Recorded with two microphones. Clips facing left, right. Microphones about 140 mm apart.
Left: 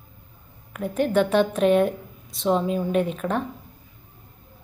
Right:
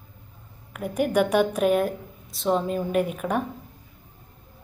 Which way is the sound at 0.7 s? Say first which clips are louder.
Left 1 dB; 10° right (ahead or behind).